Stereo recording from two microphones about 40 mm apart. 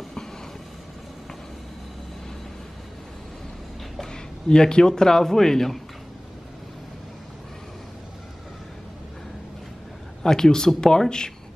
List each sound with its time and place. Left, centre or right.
4.1 s a man's voice: centre
10.2 s speech: centre